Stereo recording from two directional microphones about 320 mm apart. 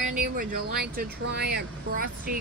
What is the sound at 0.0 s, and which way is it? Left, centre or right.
Speech, right.